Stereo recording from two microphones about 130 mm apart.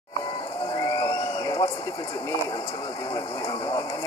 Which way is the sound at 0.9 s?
35° left (ahead or behind).